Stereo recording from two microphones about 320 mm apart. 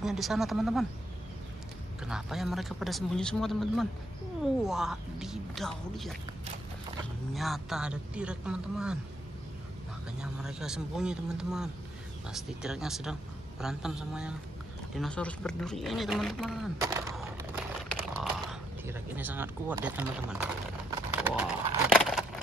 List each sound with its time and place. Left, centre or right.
0.0 s a man's voice: centre
2.0 s a man's voice: centre
7.3 s a man's voice: centre
10.2 s a man's voice: centre
21.2 s a sound: centre